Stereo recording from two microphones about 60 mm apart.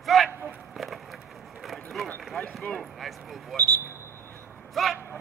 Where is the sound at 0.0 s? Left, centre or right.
Centre.